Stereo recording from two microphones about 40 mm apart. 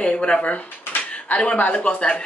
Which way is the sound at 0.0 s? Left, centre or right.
Left.